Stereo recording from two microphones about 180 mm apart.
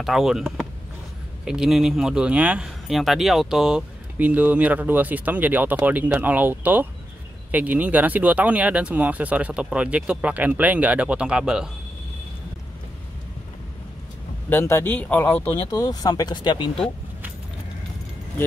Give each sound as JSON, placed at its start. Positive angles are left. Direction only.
{"t": 0.0, "sound": "speech", "side_deg": 0}
{"t": 14.5, "sound": "speech", "side_deg": 15}
{"t": 15.8, "sound": "speech", "side_deg": 20}